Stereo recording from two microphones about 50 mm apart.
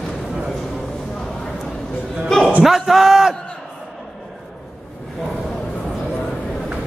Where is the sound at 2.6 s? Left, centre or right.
Centre.